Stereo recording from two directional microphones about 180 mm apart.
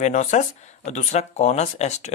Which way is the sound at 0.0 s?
40° left (ahead or behind).